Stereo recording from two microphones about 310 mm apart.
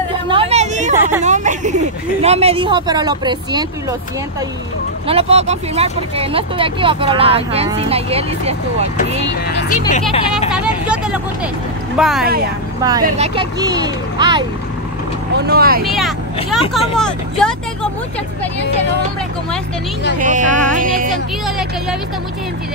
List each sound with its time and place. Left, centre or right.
0.3 s hubbub: centre
1.2 s a sound: right
2.2 s speech: centre
5.0 s speech: centre
9.3 s speech: left
9.8 s speech: left
10.5 s vehicle: centre
12.0 s speech: centre
12.8 s speech: centre
15.3 s speech: right
15.8 s speech: centre
20.2 s speech: right